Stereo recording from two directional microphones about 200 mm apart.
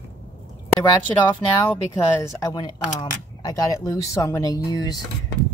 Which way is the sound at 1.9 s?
15° left (ahead or behind).